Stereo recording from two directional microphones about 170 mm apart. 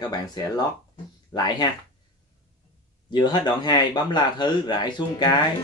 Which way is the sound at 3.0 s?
25° left (ahead or behind).